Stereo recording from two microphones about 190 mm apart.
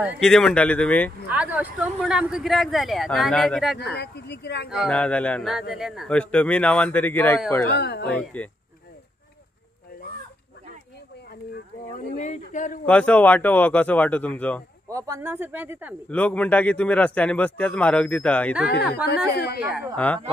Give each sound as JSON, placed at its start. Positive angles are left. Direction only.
{"t": 0.2, "sound": "a man's voice", "side_deg": 5}
{"t": 1.3, "sound": "a man's voice", "side_deg": -10}
{"t": 3.9, "sound": "speech", "side_deg": 60}
{"t": 4.6, "sound": "a man's voice", "side_deg": 0}
{"t": 7.7, "sound": "speech", "side_deg": 60}
{"t": 8.1, "sound": "a man's voice", "side_deg": 5}
{"t": 12.2, "sound": "speech", "side_deg": 40}
{"t": 12.8, "sound": "a man's voice", "side_deg": 5}
{"t": 14.9, "sound": "speech", "side_deg": -15}
{"t": 16.1, "sound": "a man's voice", "side_deg": 5}
{"t": 18.7, "sound": "speech", "side_deg": 55}